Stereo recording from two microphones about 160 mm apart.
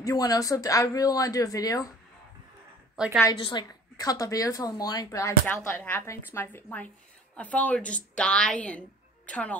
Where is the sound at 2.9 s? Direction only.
5° right (ahead or behind).